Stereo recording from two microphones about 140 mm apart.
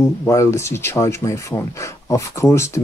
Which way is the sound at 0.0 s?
20° left (ahead or behind).